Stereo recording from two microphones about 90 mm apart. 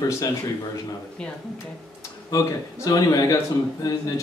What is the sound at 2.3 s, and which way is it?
Speech, 40° left (ahead or behind).